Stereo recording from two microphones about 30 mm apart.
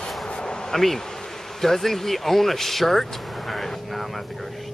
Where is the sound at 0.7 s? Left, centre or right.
Centre.